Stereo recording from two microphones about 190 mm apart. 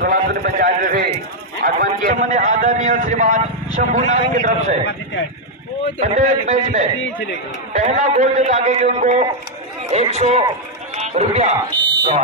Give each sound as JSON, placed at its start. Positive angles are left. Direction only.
{"t": 0.0, "sound": "a man's voice", "side_deg": -55}
{"t": 5.9, "sound": "a man's voice", "side_deg": -40}